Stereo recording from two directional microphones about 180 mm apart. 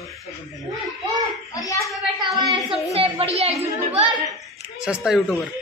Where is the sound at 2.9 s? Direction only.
35° right (ahead or behind).